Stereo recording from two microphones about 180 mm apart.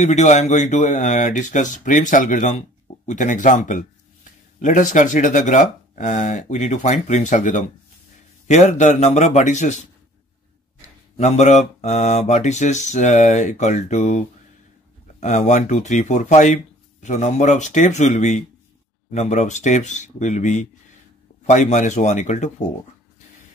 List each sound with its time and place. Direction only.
0.0 s speech: 40° left (ahead or behind)
11.1 s speech: 40° left (ahead or behind)